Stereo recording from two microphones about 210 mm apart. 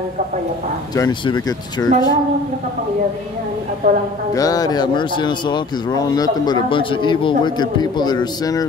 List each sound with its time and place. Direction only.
0.9 s speech: 20° left (ahead or behind)
3.8 s a woman's voice: 40° right (ahead or behind)
4.4 s speech: 15° left (ahead or behind)